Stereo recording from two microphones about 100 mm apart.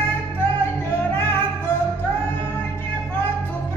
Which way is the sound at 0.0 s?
15° left (ahead or behind).